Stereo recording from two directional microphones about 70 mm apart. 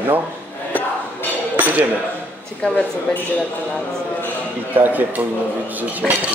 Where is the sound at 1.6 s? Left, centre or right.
Right.